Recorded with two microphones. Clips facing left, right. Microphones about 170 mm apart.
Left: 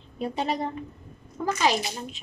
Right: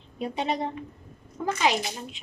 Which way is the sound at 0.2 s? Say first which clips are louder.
Left 1 dB; 20° right (ahead or behind).